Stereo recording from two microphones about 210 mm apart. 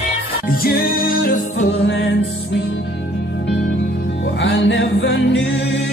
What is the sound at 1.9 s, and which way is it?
Music, 60° left (ahead or behind).